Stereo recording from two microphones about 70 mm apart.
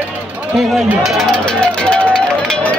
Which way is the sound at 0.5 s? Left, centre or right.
Centre.